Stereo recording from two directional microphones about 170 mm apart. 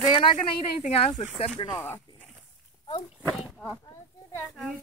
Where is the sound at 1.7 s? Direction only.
10° left (ahead or behind).